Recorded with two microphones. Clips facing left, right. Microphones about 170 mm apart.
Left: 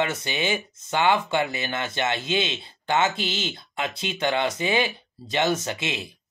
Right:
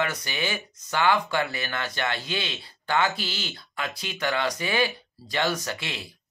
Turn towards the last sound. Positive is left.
turn(degrees=20)  # may be behind; listen again after turning